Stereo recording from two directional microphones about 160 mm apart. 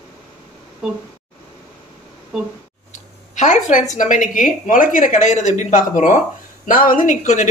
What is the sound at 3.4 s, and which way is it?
A woman's voice, 50° left (ahead or behind).